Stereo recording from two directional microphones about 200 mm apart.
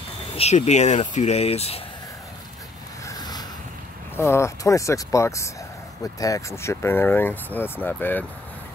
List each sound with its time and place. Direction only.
0.4 s speech: 35° left (ahead or behind)
4.2 s speech: 15° left (ahead or behind)